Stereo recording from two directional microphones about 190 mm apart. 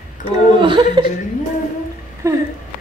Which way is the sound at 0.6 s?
25° right (ahead or behind).